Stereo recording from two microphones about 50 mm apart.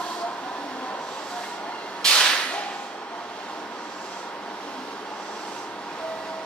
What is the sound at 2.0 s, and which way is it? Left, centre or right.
Whip, centre.